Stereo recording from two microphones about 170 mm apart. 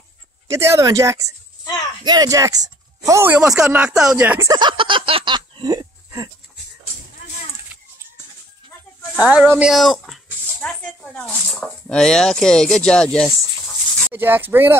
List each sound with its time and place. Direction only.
0.5 s speech: 15° right (ahead or behind)
4.5 s a sound: 25° right (ahead or behind)
9.2 s speech: 5° right (ahead or behind)
14.1 s speech: 10° right (ahead or behind)